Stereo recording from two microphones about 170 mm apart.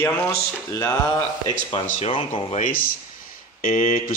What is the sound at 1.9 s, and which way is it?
Speech, 35° left (ahead or behind).